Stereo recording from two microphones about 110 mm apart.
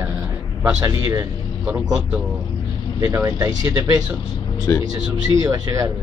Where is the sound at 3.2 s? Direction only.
30° right (ahead or behind).